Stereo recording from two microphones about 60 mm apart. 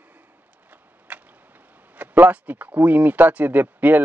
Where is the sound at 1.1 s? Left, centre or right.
Right.